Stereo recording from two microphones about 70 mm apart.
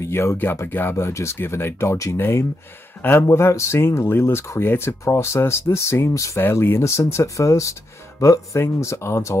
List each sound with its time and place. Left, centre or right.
0.0 s speech: left
0.4 s speech: left
0.9 s speech: left